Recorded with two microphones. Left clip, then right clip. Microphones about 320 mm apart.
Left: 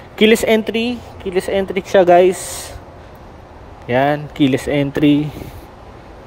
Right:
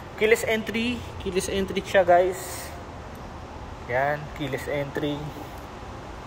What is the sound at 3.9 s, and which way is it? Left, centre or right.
Speech, left.